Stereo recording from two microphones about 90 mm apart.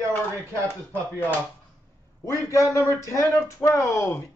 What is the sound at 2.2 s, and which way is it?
Speech, 35° left (ahead or behind).